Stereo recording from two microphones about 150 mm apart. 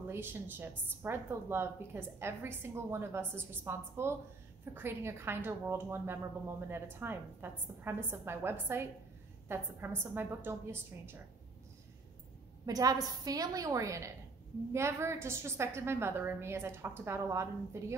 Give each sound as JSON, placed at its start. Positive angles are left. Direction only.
{"t": 0.1, "sound": "a woman's voice", "side_deg": -15}
{"t": 12.6, "sound": "a woman's voice", "side_deg": -25}